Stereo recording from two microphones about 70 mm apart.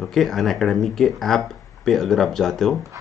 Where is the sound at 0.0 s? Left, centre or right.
Centre.